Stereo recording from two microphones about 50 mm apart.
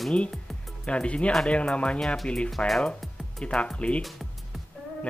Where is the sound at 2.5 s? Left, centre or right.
Centre.